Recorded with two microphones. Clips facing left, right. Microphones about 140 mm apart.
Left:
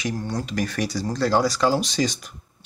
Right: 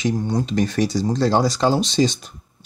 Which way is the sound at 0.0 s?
25° right (ahead or behind).